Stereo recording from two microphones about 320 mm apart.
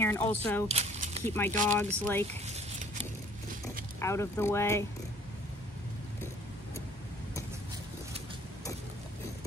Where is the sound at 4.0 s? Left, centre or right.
Centre.